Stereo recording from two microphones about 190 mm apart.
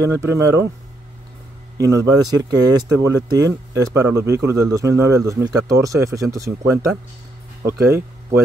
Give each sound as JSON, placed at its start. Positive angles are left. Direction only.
{"t": 0.0, "sound": "speech", "side_deg": -15}
{"t": 1.8, "sound": "speech", "side_deg": -15}